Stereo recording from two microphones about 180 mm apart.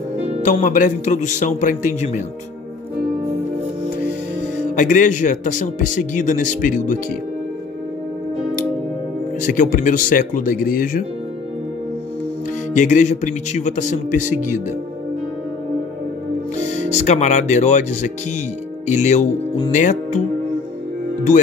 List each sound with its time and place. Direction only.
0.3 s speech: 40° left (ahead or behind)
4.4 s speech: 45° left (ahead or behind)
9.4 s speech: 45° left (ahead or behind)
12.7 s speech: 45° left (ahead or behind)
16.5 s speech: 40° left (ahead or behind)